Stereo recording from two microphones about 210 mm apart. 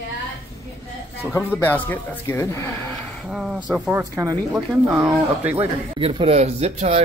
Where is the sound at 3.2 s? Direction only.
5° right (ahead or behind).